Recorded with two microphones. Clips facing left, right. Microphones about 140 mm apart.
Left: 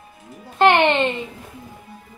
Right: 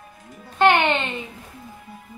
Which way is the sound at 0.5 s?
20° left (ahead or behind).